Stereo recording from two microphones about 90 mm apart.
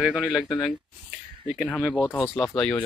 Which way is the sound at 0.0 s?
5° right (ahead or behind).